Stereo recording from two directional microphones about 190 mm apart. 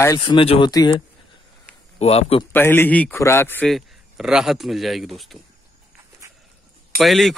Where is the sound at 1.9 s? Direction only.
35° left (ahead or behind).